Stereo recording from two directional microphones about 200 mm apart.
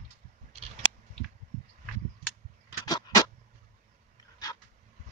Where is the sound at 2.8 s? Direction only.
20° left (ahead or behind).